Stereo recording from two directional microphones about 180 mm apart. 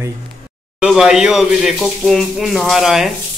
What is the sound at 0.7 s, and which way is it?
Speech, 5° right (ahead or behind).